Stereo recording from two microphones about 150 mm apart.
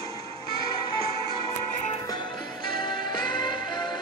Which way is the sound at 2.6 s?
30° left (ahead or behind).